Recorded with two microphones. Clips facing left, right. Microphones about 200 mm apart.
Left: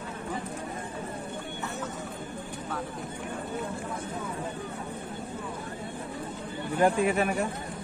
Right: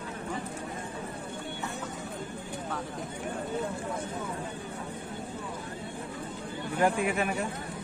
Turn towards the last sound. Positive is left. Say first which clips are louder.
# left 3 dB
turn(degrees=35)  # may be behind; listen again after turning